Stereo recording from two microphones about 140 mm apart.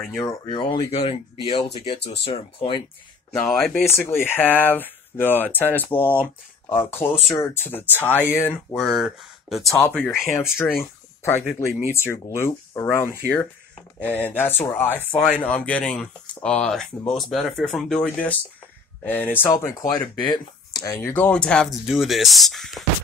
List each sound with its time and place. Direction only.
0.2 s speech: 35° left (ahead or behind)
3.4 s speech: centre (ahead or behind)
3.7 s speech: 15° left (ahead or behind)
8.7 s speech: centre (ahead or behind)
9.8 s speech: 15° left (ahead or behind)
19.9 s speech: 30° left (ahead or behind)
21.1 s speech: 10° left (ahead or behind)